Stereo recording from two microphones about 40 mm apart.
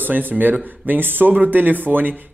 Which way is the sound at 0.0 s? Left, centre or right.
Right.